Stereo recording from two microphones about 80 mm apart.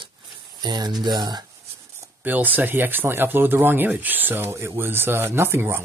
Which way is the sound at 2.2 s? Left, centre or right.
Right.